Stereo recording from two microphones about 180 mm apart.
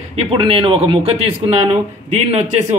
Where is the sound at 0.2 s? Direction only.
30° right (ahead or behind).